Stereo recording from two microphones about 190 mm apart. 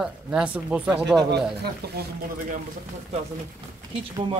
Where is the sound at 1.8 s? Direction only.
55° right (ahead or behind).